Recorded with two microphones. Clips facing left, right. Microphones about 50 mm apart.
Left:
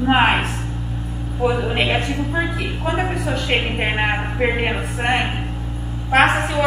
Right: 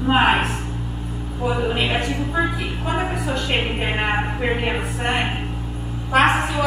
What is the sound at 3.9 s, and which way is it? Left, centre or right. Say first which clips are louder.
Speech: left 1 dB; centre.